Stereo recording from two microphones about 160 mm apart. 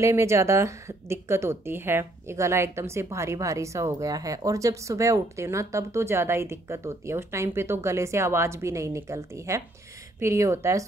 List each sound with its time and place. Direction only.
0.0 s a woman's voice: 20° right (ahead or behind)